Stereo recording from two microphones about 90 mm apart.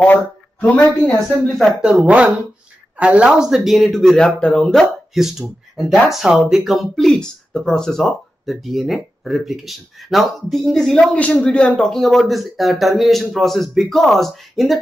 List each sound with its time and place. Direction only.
0.0 s speech: 15° left (ahead or behind)
1.3 s speech: centre (ahead or behind)